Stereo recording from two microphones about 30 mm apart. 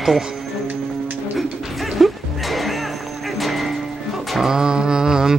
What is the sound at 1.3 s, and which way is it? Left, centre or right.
Music, centre.